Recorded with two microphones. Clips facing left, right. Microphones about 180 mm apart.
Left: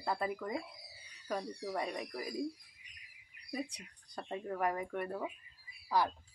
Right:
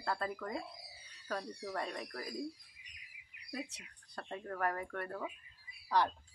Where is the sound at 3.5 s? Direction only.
15° left (ahead or behind).